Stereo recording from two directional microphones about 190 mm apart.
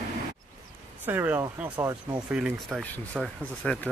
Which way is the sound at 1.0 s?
10° right (ahead or behind).